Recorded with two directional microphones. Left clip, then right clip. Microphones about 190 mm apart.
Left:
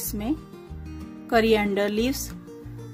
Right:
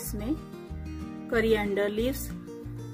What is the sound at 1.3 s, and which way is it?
Speech, 35° left (ahead or behind).